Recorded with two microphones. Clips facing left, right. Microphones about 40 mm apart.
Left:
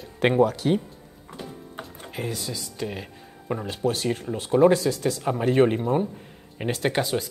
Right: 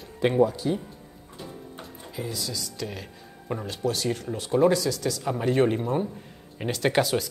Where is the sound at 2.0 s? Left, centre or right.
Left.